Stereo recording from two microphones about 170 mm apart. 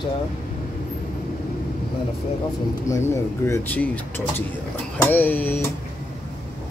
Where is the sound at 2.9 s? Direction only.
15° left (ahead or behind).